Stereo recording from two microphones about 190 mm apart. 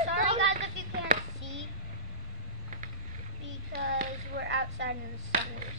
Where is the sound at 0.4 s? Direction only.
70° right (ahead or behind).